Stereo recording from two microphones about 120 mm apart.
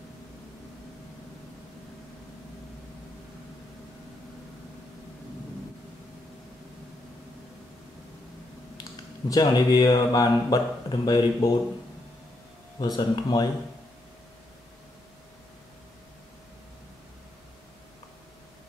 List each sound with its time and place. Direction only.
9.3 s speech: 30° left (ahead or behind)
12.7 s speech: 40° left (ahead or behind)